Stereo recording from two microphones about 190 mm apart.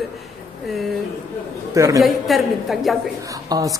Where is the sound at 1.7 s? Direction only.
15° right (ahead or behind).